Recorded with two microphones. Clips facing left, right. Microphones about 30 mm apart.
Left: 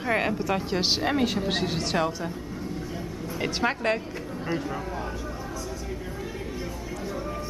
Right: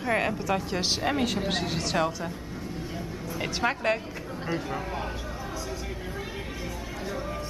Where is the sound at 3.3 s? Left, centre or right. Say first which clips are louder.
Left 1 dB; centre.